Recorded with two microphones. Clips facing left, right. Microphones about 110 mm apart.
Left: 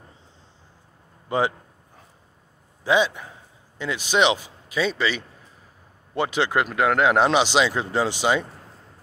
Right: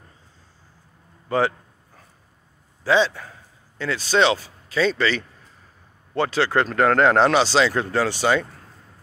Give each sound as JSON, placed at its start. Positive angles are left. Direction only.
{"t": 1.3, "sound": "speech", "side_deg": 20}
{"t": 2.8, "sound": "a man's voice", "side_deg": 15}